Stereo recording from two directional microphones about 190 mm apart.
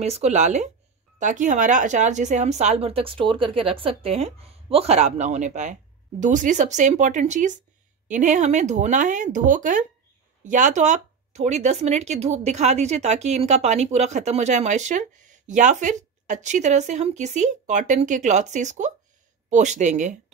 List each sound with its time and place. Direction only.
0.0 s speech: 35° right (ahead or behind)